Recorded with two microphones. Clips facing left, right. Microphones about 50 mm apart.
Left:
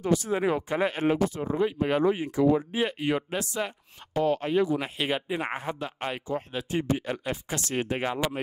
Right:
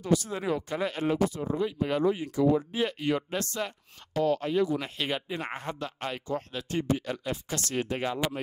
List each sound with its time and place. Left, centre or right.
0.0 s speech: left
2.7 s speech: centre
4.1 s speech: left